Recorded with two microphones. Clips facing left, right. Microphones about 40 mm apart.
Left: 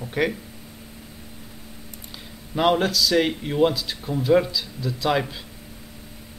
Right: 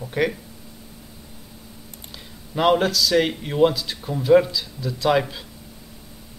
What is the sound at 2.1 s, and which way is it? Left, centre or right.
Speech, centre.